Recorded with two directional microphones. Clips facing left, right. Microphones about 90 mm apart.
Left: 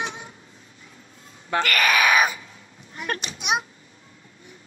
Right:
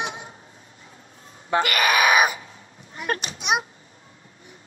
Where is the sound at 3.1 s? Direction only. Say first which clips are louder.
Right 2 dB; 30° right (ahead or behind).